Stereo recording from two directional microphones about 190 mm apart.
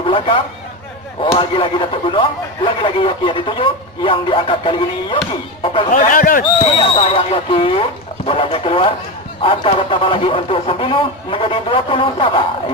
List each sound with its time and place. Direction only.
1.2 s speech: 25° left (ahead or behind)
5.9 s speech: 45° left (ahead or behind)
6.8 s speech: 30° left (ahead or behind)